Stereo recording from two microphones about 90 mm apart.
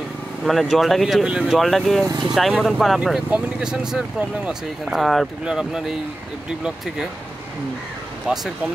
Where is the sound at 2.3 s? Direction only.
Centre (ahead or behind).